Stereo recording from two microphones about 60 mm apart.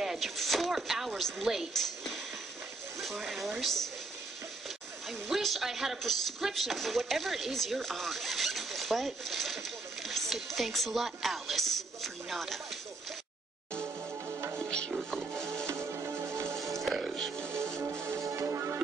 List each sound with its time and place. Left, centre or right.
0.0 s speech: centre
1.7 s a sound: centre
3.0 s speech: centre
5.3 s speech: centre
14.6 s music: centre
15.6 s music: right
16.8 s music: centre
17.7 s music: right
18.2 s music: right